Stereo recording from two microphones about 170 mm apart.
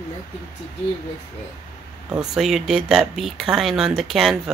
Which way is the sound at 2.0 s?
5° right (ahead or behind).